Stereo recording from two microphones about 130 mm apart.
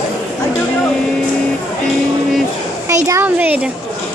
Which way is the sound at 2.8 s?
25° right (ahead or behind).